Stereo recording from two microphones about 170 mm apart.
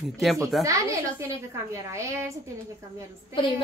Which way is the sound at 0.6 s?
20° right (ahead or behind).